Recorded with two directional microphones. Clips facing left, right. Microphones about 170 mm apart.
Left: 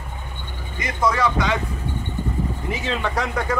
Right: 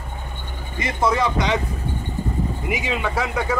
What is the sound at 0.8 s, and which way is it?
Speech, 25° right (ahead or behind).